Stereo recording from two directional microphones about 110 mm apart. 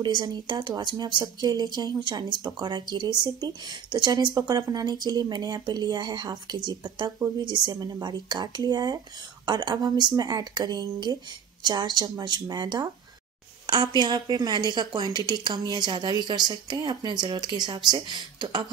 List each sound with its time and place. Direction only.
0.0 s speech: 40° right (ahead or behind)